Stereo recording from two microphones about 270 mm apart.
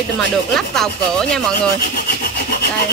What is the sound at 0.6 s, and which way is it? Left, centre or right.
Speech, centre.